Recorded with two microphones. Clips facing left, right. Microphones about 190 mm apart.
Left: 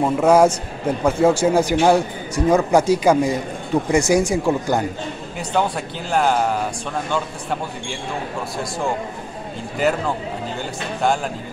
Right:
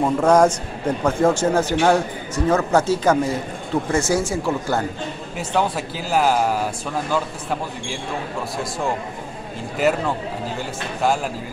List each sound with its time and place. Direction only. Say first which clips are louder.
0.0 s a man's voice: left 1 dB; 5° left (ahead or behind)
5.4 s speech: even; centre (ahead or behind)
9.8 s speech: even; centre (ahead or behind)